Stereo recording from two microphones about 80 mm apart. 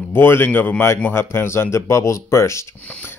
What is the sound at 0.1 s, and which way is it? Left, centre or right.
Speech, left.